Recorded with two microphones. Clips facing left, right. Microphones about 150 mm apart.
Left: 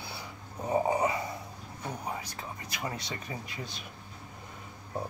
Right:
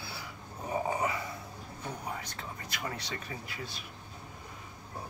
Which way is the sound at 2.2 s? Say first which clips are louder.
Left 1 dB; 10° left (ahead or behind).